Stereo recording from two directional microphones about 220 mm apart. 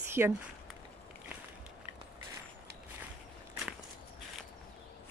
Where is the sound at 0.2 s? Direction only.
10° right (ahead or behind).